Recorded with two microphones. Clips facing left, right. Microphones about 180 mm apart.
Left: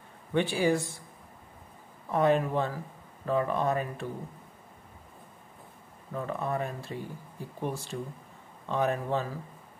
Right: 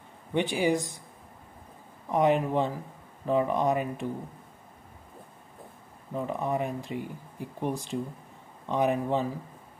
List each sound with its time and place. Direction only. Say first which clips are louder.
0.3 s speech: even; 15° right (ahead or behind)
2.0 s speech: right 1 dB; 15° right (ahead or behind)
6.1 s speech: right 2 dB; 15° right (ahead or behind)